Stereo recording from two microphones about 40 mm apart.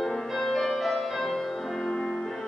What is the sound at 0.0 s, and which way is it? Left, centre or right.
Music, centre.